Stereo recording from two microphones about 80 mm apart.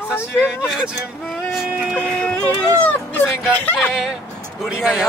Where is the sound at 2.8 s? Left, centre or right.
Left.